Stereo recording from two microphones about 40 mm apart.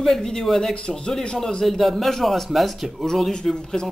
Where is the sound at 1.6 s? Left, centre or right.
Centre.